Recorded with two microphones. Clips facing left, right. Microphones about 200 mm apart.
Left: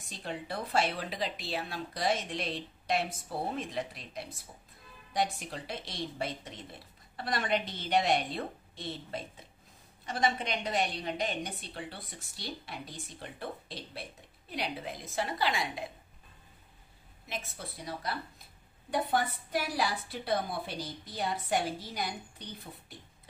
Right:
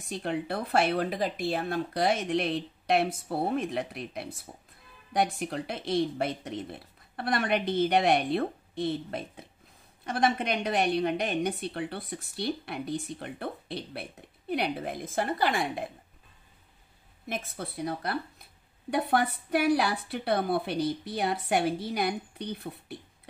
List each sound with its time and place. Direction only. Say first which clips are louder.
0.1 s a woman's voice: right 7 dB; 60° right (ahead or behind)
17.3 s speech: right 6 dB; 55° right (ahead or behind)